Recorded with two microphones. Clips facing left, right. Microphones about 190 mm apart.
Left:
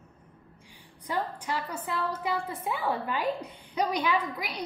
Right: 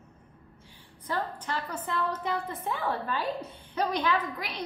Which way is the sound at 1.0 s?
10° left (ahead or behind).